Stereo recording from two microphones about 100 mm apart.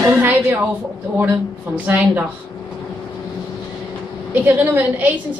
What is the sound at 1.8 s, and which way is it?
Speech, 20° right (ahead or behind).